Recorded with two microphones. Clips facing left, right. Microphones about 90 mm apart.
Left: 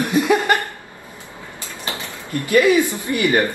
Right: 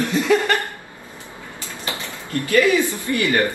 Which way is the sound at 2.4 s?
20° left (ahead or behind).